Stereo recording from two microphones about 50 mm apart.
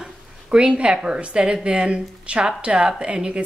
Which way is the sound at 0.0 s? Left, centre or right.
Centre.